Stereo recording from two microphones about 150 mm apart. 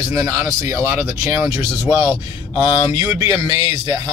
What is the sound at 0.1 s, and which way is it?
Speech, 20° right (ahead or behind).